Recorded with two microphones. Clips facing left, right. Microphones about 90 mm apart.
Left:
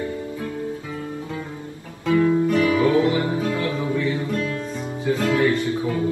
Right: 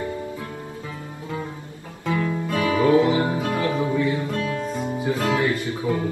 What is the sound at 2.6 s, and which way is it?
Music, 25° right (ahead or behind).